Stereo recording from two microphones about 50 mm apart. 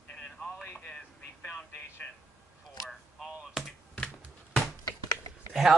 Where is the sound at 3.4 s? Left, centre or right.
Centre.